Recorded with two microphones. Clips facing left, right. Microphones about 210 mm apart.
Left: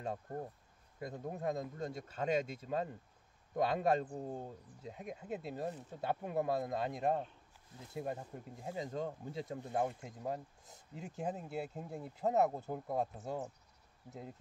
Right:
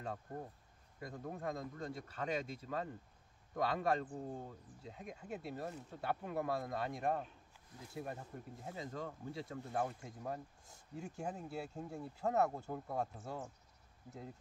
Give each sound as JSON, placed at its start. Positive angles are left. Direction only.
{"t": 0.9, "sound": "speech", "side_deg": 25}